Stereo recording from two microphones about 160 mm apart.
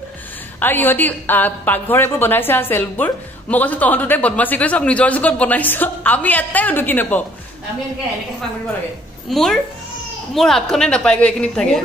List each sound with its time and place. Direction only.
0.6 s a woman's voice: 10° left (ahead or behind)
9.3 s a woman's voice: centre (ahead or behind)